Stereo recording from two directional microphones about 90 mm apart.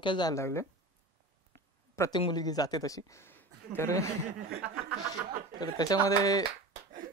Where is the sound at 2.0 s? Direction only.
30° left (ahead or behind).